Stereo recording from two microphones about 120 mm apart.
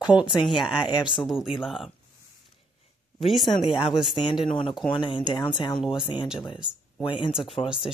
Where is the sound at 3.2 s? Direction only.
Centre (ahead or behind).